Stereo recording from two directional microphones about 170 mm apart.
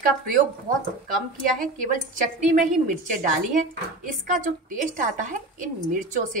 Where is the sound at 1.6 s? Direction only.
50° right (ahead or behind).